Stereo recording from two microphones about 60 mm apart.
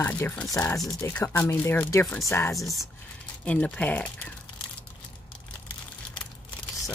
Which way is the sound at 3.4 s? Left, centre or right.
Left.